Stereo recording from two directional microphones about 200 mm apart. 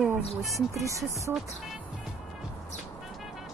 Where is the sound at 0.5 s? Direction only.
15° right (ahead or behind).